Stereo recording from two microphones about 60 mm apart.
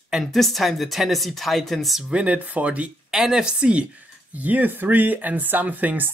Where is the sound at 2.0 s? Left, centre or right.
Right.